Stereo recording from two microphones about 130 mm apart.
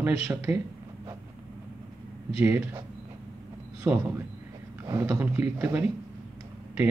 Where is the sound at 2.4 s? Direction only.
20° right (ahead or behind).